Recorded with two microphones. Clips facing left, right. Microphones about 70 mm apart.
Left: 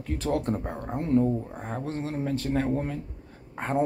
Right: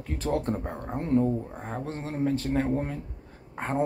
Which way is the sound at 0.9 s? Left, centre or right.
Right.